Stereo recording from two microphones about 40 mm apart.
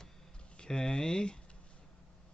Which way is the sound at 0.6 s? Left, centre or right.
Centre.